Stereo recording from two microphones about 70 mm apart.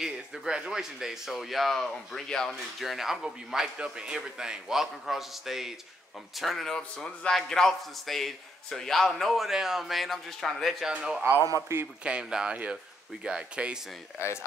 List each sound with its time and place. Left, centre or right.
0.0 s a man's voice: centre
2.8 s a man's voice: centre
11.0 s speech: centre
14.1 s speech: left